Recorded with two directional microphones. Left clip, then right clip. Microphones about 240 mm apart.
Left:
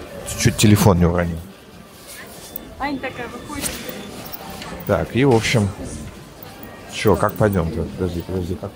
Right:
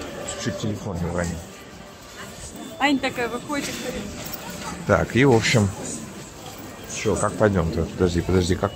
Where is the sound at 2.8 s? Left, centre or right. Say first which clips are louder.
Right 4 dB; right.